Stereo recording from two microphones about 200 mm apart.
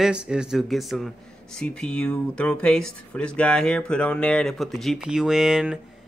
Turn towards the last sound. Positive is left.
turn(degrees=-5)  # may be behind; listen again after turning